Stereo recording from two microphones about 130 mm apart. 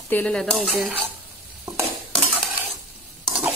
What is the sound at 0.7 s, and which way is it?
Stir, 15° right (ahead or behind).